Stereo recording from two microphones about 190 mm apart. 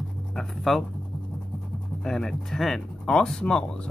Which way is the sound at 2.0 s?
Centre (ahead or behind).